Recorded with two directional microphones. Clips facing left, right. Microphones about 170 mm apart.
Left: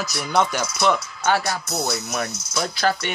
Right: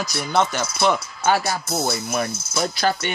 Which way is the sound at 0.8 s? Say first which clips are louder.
Right 1 dB; 5° right (ahead or behind).